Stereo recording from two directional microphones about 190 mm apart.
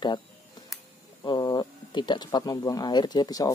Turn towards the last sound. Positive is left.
turn(degrees=20)  # may be behind; listen again after turning